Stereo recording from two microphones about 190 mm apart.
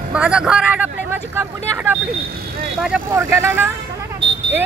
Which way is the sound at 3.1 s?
15° right (ahead or behind).